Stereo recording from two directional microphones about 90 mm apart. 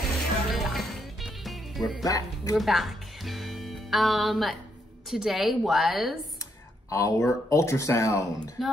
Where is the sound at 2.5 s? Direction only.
Centre (ahead or behind).